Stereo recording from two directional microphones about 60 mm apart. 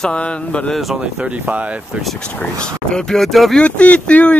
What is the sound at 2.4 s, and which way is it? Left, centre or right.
Speech, centre.